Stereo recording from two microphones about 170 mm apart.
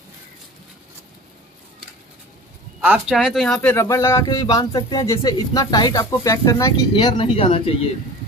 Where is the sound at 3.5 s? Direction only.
15° left (ahead or behind).